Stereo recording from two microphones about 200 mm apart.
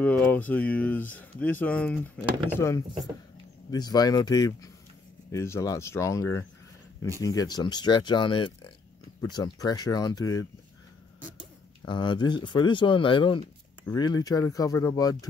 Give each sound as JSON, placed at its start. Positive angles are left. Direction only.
{"t": 0.0, "sound": "speech", "side_deg": 5}
{"t": 11.8, "sound": "speech", "side_deg": 25}